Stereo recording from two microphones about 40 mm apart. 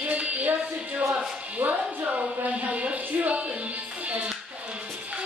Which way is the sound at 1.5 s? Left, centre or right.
Right.